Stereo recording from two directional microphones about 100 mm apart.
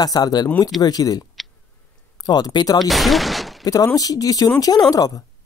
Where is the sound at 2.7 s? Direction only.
Centre (ahead or behind).